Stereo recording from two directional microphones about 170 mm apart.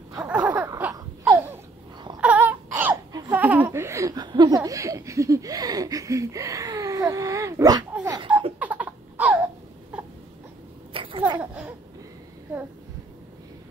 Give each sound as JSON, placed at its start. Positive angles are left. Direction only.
{"t": 0.3, "sound": "a sound", "side_deg": -10}
{"t": 2.1, "sound": "baby cry", "side_deg": -10}
{"t": 3.1, "sound": "laughter", "side_deg": -20}
{"t": 3.3, "sound": "laughter", "side_deg": -10}
{"t": 8.0, "sound": "beatboxing", "side_deg": -20}
{"t": 8.5, "sound": "a sound", "side_deg": -10}
{"t": 9.9, "sound": "crying", "side_deg": -5}
{"t": 10.9, "sound": "a sound", "side_deg": -30}
{"t": 11.3, "sound": "babbling", "side_deg": -10}